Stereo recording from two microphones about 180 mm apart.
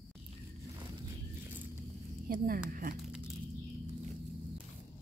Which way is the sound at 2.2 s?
50° right (ahead or behind).